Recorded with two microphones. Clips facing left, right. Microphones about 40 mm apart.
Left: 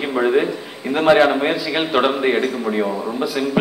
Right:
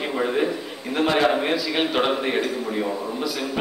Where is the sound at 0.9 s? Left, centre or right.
Left.